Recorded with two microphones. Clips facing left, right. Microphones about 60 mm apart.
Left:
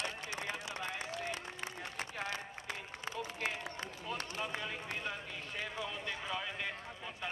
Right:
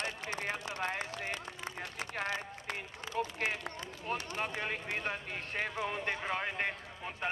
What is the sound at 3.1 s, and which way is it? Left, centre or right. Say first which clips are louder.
Run: right 6 dB; right.